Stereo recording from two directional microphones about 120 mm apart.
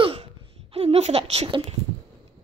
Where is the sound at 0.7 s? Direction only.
60° right (ahead or behind).